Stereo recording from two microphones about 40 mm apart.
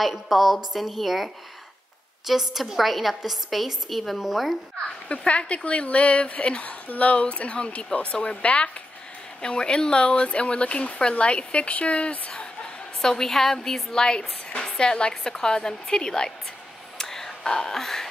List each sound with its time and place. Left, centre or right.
0.3 s a woman's voice: centre
5.0 s speech: left
9.4 s speech: left
13.0 s a woman's voice: centre
13.9 s a woman's voice: left
17.0 s a sound: centre